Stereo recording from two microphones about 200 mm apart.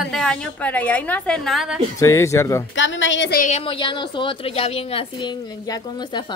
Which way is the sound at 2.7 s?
70° left (ahead or behind).